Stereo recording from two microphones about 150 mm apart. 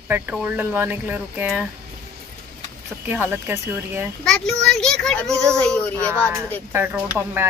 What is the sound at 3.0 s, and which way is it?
Speech, 15° right (ahead or behind).